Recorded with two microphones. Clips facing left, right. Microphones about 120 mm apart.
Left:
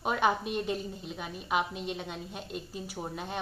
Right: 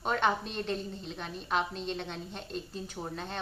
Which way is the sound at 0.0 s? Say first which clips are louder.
Left 1 dB; 10° left (ahead or behind).